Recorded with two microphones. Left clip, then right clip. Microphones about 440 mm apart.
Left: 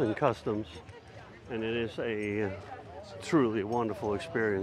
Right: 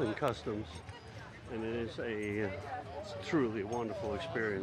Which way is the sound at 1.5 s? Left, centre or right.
Left.